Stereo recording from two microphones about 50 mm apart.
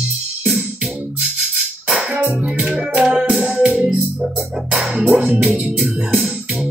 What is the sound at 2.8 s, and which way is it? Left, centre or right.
Music, centre.